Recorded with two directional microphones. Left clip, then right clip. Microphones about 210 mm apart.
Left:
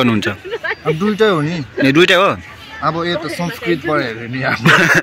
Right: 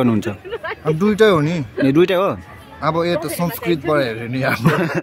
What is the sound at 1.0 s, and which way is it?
Speech, 25° right (ahead or behind).